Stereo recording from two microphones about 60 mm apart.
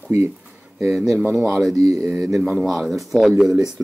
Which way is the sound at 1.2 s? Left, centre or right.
Right.